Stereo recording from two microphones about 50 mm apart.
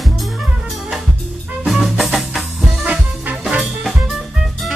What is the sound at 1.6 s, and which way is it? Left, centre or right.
Music, centre.